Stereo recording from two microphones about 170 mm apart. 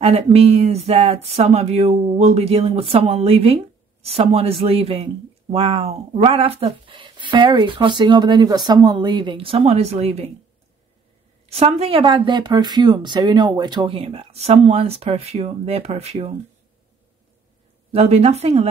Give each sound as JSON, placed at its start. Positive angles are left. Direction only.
{"t": 0.0, "sound": "speech", "side_deg": -35}
{"t": 11.5, "sound": "speech", "side_deg": -35}
{"t": 17.9, "sound": "speech", "side_deg": -35}